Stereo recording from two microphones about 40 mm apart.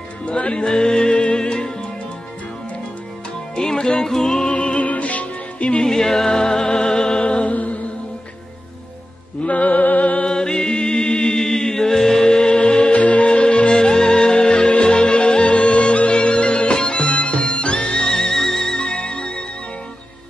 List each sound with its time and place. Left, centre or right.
0.2 s music: left
3.5 s music: centre
4.5 s music: left
5.8 s music: centre
7.5 s music: left
9.4 s music: left
10.2 s music: left
12.9 s music: left